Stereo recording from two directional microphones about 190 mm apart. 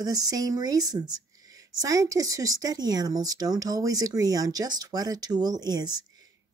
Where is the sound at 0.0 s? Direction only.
20° right (ahead or behind).